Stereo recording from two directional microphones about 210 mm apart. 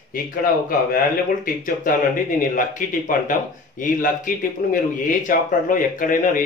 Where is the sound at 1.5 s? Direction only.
40° left (ahead or behind).